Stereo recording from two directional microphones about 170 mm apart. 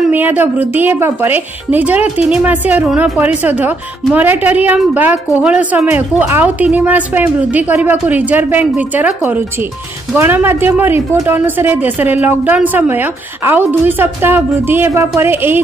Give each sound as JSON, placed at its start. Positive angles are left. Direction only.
{"t": 0.1, "sound": "a woman's voice", "side_deg": -10}